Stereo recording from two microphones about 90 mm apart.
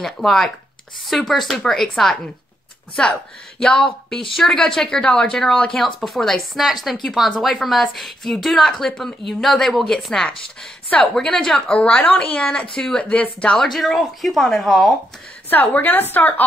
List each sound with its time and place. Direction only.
0.0 s a woman's voice: 5° left (ahead or behind)
15.5 s a woman's voice: 20° left (ahead or behind)